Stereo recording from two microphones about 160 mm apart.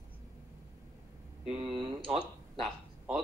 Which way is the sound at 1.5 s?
35° right (ahead or behind).